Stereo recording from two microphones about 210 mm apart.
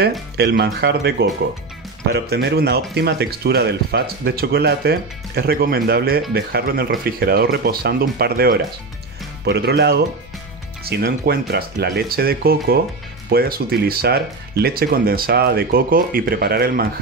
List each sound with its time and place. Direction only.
0.4 s speech: 50° right (ahead or behind)
2.1 s speech: 50° right (ahead or behind)